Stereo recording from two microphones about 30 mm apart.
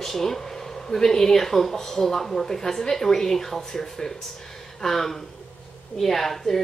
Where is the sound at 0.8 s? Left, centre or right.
Centre.